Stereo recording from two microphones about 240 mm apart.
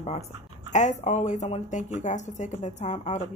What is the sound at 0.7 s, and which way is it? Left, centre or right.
Speech, left.